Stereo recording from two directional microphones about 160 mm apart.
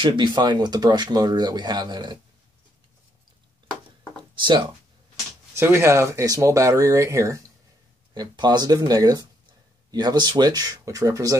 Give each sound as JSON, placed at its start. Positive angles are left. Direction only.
{"t": 0.0, "sound": "speech", "side_deg": -30}
{"t": 4.2, "sound": "a sound", "side_deg": -30}
{"t": 5.5, "sound": "speech", "side_deg": -15}